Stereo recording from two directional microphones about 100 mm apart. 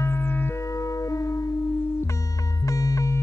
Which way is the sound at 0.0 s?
25° left (ahead or behind).